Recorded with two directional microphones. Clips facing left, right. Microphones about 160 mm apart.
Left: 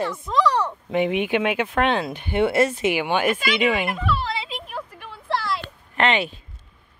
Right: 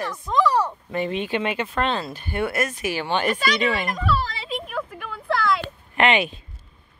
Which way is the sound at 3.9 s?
40° right (ahead or behind).